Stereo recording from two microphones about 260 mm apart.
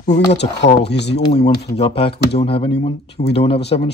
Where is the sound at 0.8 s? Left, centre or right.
Left.